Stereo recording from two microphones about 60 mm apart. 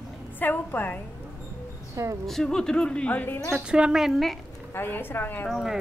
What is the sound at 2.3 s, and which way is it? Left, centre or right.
A woman's voice, centre.